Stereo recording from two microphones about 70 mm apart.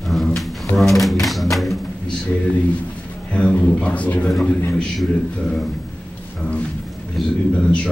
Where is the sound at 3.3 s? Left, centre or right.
Centre.